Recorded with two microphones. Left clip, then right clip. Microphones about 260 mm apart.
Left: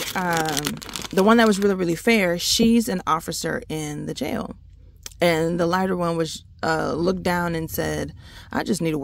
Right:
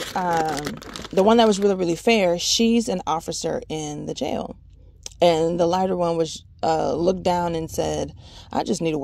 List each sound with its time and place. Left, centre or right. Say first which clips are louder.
0.4 s speech: even; left